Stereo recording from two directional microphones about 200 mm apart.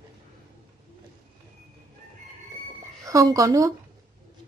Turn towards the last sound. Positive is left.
turn(degrees=-20)  # may be behind; listen again after turning